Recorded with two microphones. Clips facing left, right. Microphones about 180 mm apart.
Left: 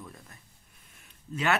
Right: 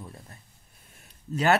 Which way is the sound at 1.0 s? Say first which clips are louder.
Right 5 dB; 40° right (ahead or behind).